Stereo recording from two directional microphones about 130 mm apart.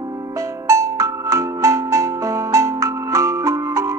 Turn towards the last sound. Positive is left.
turn(degrees=-25)  # may be behind; listen again after turning